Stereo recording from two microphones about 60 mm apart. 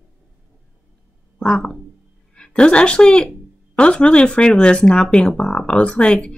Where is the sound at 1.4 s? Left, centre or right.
Centre.